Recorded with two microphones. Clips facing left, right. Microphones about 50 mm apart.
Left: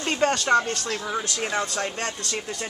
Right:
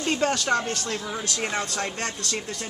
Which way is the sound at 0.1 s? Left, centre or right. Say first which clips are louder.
Left 3 dB; centre.